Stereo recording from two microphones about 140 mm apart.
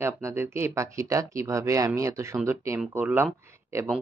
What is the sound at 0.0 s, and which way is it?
Speech, 20° right (ahead or behind).